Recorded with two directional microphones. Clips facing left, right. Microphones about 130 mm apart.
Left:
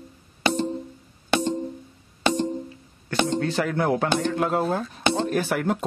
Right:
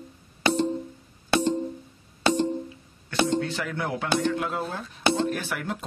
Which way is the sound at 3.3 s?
45° left (ahead or behind).